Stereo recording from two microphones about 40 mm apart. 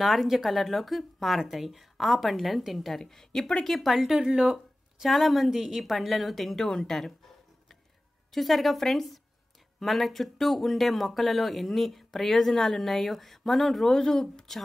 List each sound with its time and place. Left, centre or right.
0.0 s speech: centre
3.0 s a woman's voice: centre
4.1 s speech: centre
5.0 s speech: centre
8.3 s speech: centre
13.9 s a woman's voice: centre